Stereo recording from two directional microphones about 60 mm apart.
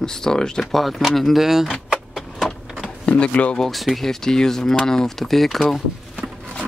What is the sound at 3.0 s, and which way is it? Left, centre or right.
Speech, centre.